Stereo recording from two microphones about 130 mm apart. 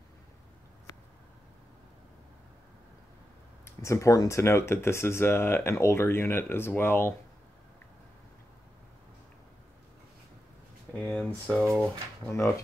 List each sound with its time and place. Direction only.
3.6 s speech: 20° left (ahead or behind)
11.0 s a sound: 5° left (ahead or behind)
12.3 s speech: 20° left (ahead or behind)